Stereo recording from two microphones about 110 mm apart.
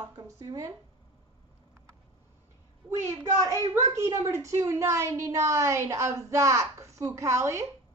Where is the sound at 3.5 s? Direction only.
30° right (ahead or behind).